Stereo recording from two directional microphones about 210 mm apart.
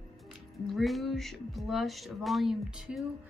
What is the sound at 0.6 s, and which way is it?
A woman's voice, centre (ahead or behind).